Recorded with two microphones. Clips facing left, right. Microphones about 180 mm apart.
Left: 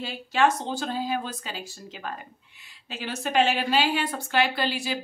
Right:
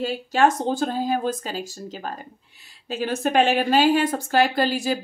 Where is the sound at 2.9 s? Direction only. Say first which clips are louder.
Right 7 dB; 50° right (ahead or behind).